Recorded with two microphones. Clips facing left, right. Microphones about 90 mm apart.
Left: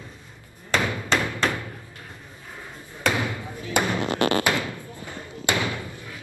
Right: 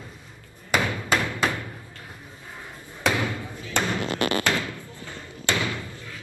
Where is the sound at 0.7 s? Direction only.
5° right (ahead or behind).